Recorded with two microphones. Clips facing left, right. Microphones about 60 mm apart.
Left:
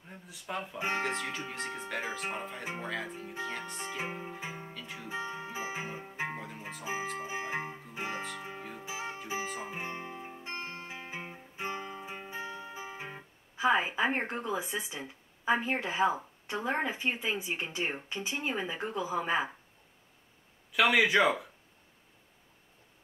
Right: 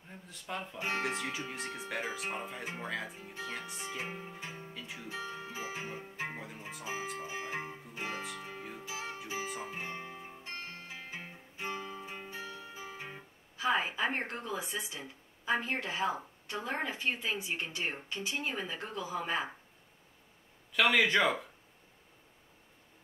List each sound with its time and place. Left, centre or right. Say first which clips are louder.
0.1 s speech: left 2 dB; centre
2.3 s speech: left 1 dB; centre
2.6 s speech: left 2 dB; centre
3.9 s speech: left 3 dB; centre
5.0 s music: left 4 dB; centre
6.8 s speech: left 3 dB; centre
7.2 s music: left 3 dB; centre
16.4 s speech: left 4 dB; centre
20.7 s speech: left 2 dB; centre